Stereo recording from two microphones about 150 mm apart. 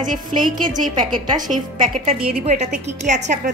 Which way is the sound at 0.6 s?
60° right (ahead or behind).